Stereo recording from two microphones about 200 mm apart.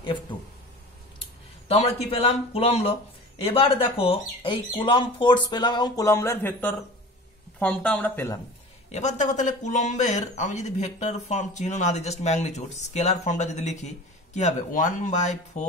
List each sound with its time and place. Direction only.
1.7 s speech: 30° left (ahead or behind); by 8.4 s 10° left (ahead or behind)
8.9 s speech: 35° left (ahead or behind)